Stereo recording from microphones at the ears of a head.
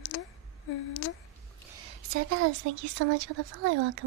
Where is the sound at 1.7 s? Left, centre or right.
Right.